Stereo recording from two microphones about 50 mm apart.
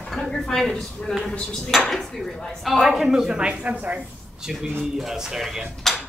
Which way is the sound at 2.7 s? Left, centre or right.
Centre.